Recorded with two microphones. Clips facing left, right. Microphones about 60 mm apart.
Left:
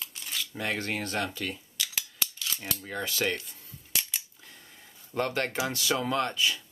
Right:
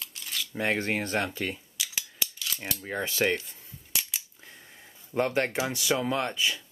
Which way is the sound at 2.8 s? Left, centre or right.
Right.